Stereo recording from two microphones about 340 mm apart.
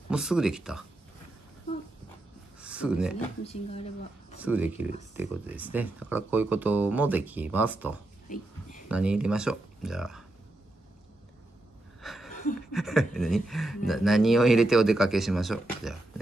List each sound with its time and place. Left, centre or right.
0.1 s speech: centre
2.6 s speech: centre
4.4 s speech: centre
12.0 s a sound: centre
12.3 s a sound: left
12.7 s speech: centre